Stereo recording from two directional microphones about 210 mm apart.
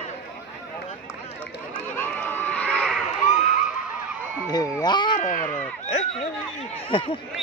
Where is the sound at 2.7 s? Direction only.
Centre (ahead or behind).